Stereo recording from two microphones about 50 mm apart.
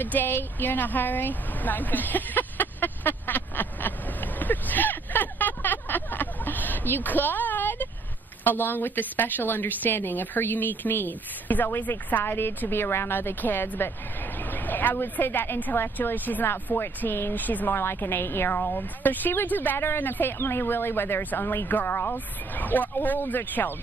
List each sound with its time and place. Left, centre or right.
0.0 s a sound: left
8.5 s a woman's voice: left
16.7 s a woman's voice: left
17.7 s speech: left
18.6 s a woman's voice: left
20.3 s a woman's voice: left